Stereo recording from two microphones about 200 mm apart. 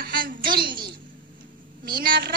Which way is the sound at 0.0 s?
45° right (ahead or behind).